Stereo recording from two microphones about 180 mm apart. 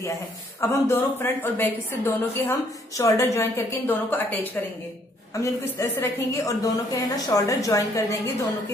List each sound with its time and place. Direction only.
0.6 s a woman's voice: 15° left (ahead or behind)